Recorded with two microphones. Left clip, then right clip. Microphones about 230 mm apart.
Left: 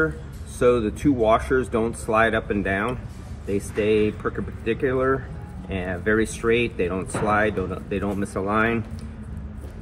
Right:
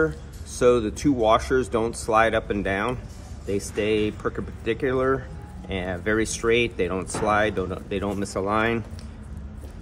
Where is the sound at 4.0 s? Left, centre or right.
Right.